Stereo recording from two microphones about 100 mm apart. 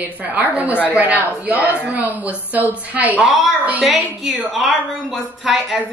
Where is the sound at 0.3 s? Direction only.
15° right (ahead or behind).